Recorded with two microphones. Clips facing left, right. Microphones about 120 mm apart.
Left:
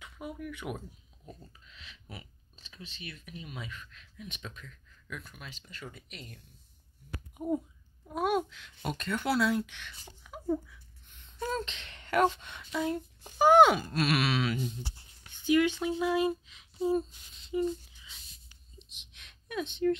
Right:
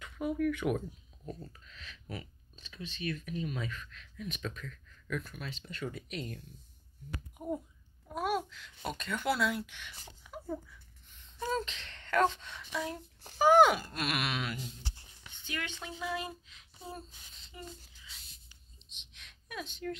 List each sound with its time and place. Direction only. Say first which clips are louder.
0.0 s speech: right 9 dB; 10° left (ahead or behind)
4.4 s speech: right 5 dB; 15° left (ahead or behind); by 9.9 s 10° right (ahead or behind)
10.2 s a sound: left 7 dB; 5° left (ahead or behind)
11.5 s speech: even; centre (ahead or behind)
11.9 s speech: left 2 dB; 10° left (ahead or behind); by 14.6 s 10° right (ahead or behind)
14.6 s speech: left 8 dB; 10° left (ahead or behind)
18.8 s a sound: left 4 dB; 5° left (ahead or behind)